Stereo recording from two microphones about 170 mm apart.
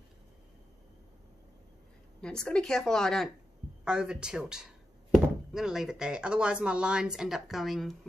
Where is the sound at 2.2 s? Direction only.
5° left (ahead or behind).